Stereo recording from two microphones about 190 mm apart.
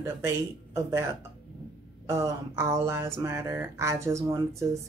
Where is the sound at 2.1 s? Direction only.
15° right (ahead or behind).